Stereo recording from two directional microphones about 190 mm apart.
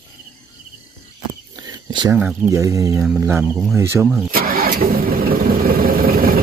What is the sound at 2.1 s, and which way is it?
Speech, 5° right (ahead or behind).